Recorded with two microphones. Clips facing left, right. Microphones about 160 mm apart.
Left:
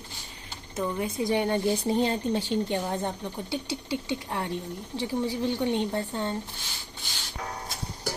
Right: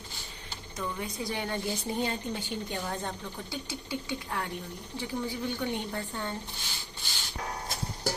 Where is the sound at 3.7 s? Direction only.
80° left.